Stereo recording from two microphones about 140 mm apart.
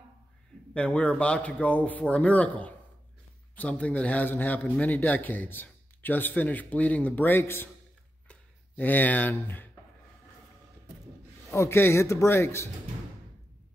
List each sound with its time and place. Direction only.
0.7 s a man's voice: 10° left (ahead or behind)
11.5 s a man's voice: 20° left (ahead or behind)